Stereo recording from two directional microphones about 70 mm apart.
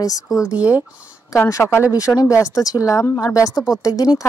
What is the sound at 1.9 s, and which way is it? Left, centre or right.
Speech, left.